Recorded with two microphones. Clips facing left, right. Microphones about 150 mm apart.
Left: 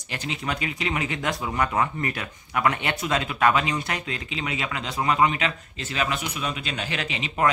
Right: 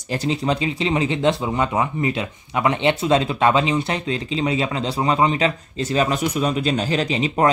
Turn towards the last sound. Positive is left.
turn(degrees=-35)  # may be behind; listen again after turning